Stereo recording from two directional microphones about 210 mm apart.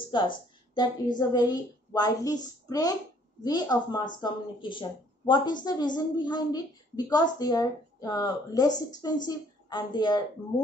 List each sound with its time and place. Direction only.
0.1 s speech: 20° left (ahead or behind)